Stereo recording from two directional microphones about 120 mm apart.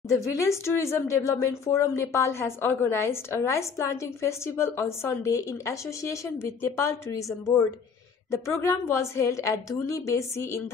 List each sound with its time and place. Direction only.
0.3 s a woman's voice: 25° left (ahead or behind)